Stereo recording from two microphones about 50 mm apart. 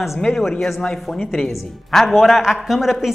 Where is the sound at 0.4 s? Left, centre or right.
Centre.